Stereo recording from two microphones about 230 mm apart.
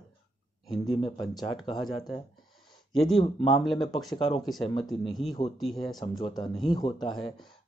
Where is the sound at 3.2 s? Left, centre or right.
Left.